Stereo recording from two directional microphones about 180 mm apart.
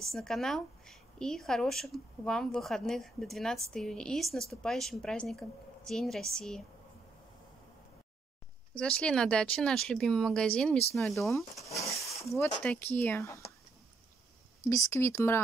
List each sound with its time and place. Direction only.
0.1 s a woman's voice: centre (ahead or behind)
8.7 s a woman's voice: 5° left (ahead or behind)
11.8 s a sound: 15° left (ahead or behind)
12.4 s speech: 10° left (ahead or behind)
14.6 s speech: 15° left (ahead or behind)